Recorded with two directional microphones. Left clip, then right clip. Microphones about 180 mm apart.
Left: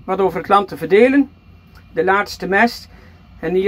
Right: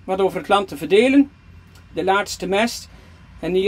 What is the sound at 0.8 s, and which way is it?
Speech, 25° left (ahead or behind).